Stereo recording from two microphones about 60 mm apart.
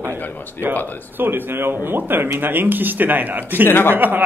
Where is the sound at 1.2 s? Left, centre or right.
Right.